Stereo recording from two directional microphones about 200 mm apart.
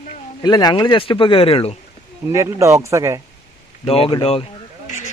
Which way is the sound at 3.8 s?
25° left (ahead or behind).